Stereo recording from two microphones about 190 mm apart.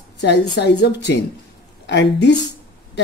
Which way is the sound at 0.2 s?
65° left (ahead or behind).